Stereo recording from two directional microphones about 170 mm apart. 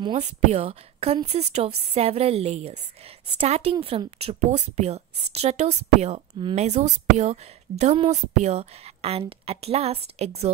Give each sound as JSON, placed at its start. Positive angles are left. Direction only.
{"t": 0.0, "sound": "a woman's voice", "side_deg": -35}